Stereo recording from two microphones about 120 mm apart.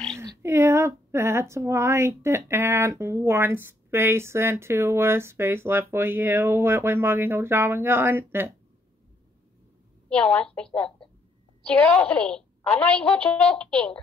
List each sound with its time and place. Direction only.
0.2 s speech: 25° right (ahead or behind)
10.0 s a woman's voice: 5° left (ahead or behind)